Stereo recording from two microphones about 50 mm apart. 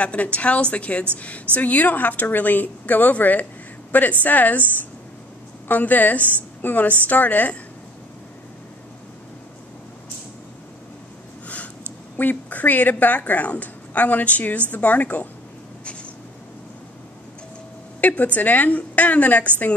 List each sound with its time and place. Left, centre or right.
0.0 s a woman's voice: left
5.7 s a woman's voice: left
11.4 s a sound: left
12.2 s a woman's voice: left
15.8 s a sound: left
18.0 s a woman's voice: left